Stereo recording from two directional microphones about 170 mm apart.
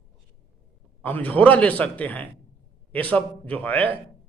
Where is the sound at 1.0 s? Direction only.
10° left (ahead or behind).